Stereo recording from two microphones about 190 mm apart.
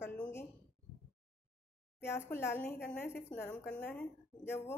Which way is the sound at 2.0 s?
15° left (ahead or behind).